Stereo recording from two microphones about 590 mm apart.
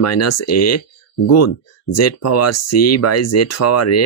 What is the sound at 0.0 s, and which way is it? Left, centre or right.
Speech, left.